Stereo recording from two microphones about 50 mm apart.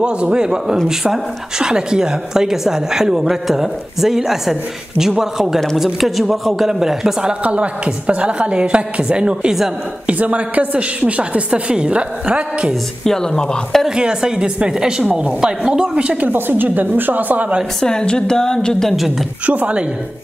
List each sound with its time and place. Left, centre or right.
0.0 s a man's voice: centre
7.4 s a woman's voice: right
10.0 s a woman's voice: right
13.0 s a woman's voice: centre
13.8 s a woman's voice: centre
16.3 s a woman's voice: right
17.7 s a woman's voice: centre
19.4 s a woman's voice: right